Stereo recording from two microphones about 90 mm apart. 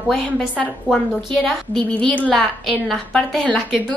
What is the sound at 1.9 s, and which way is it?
Speech, 15° left (ahead or behind).